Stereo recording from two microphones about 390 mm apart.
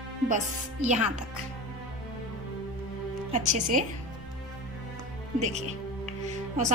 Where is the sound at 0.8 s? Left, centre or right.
Centre.